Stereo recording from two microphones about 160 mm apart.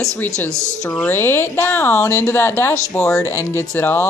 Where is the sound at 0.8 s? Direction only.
15° left (ahead or behind).